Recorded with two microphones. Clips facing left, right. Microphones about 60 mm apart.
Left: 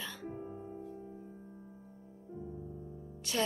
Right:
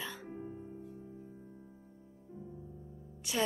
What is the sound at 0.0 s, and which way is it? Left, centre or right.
Music, centre.